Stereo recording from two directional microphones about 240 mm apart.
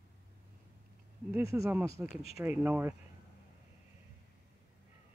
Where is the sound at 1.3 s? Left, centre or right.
Centre.